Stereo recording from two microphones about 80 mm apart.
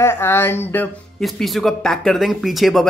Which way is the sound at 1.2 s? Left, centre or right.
Centre.